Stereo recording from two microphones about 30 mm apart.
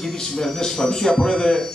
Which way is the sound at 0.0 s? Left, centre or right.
Centre.